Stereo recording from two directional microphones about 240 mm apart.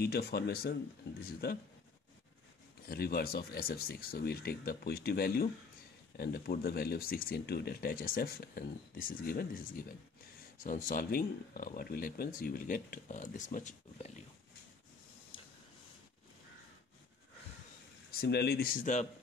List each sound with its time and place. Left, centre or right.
0.0 s speech: left
2.9 s speech: left
15.3 s a sound: left
18.1 s speech: left